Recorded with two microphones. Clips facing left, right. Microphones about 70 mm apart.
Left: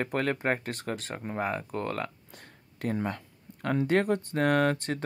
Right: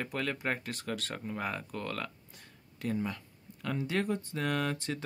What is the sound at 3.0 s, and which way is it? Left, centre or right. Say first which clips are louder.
Speech: left 5 dB; left.